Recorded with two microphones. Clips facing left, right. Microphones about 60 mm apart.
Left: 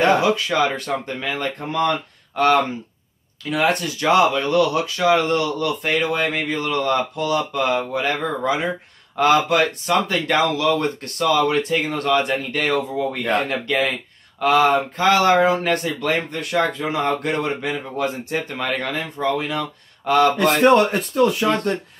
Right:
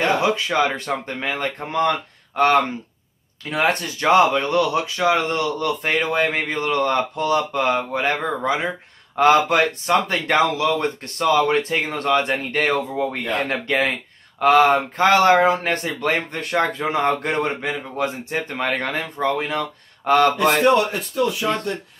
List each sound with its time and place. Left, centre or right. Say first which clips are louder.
0.2 s speech: left 1 dB; right
14.4 s speech: right 2 dB; right
20.7 s speech: left 3 dB; left